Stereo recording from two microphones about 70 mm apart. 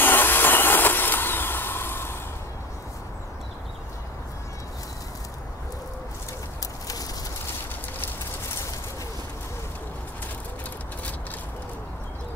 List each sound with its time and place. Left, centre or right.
0.0 s vehicle: left